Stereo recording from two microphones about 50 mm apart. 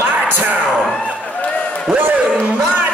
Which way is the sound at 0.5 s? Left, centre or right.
Right.